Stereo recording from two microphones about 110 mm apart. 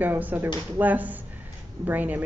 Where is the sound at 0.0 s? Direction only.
15° right (ahead or behind).